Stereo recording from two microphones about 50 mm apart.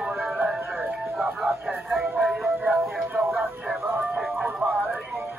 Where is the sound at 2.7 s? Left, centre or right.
Right.